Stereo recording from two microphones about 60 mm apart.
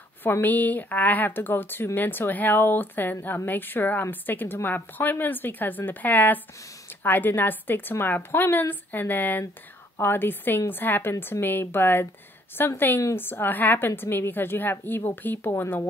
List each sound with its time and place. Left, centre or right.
0.2 s a woman's voice: left